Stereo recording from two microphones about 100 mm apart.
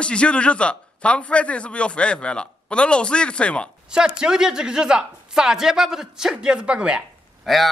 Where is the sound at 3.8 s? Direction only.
10° right (ahead or behind).